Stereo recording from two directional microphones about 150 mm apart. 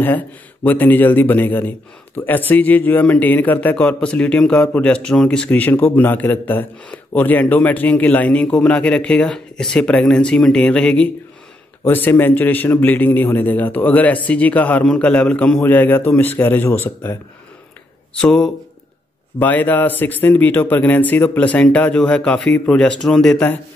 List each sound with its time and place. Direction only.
0.7 s a man's voice: 10° left (ahead or behind)